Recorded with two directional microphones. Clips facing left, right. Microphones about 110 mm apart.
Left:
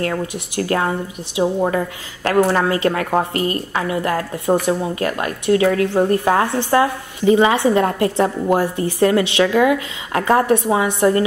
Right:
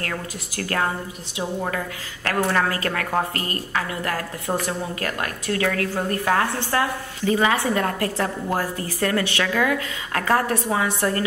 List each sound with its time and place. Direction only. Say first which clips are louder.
0.0 s a woman's voice: left 8 dB; 25° left (ahead or behind)